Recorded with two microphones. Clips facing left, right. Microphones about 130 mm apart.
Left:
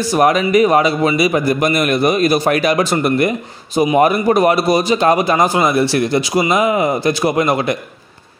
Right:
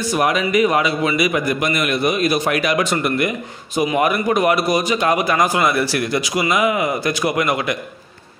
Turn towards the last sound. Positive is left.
turn(degrees=35)  # may be behind; listen again after turning